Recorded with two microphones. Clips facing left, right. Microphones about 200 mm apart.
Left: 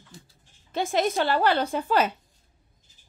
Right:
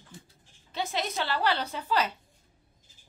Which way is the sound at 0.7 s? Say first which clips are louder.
Left 7 dB; 50° left (ahead or behind).